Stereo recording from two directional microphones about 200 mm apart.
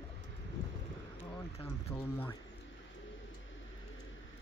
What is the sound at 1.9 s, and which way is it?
Speech, 10° left (ahead or behind).